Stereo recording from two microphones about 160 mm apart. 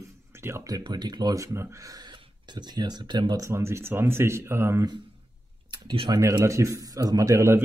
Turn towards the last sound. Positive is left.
turn(degrees=-20)  # may be behind; listen again after turning